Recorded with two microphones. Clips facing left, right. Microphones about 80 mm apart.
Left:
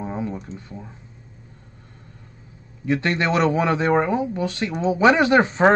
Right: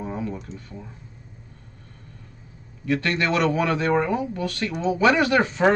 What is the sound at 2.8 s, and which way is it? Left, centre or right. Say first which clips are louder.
Speech: left 2 dB; left.